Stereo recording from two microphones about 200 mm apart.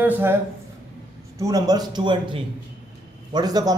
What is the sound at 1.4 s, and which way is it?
A man's voice, 15° right (ahead or behind).